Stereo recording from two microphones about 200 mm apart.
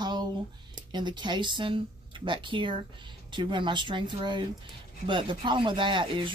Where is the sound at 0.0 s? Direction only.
20° right (ahead or behind).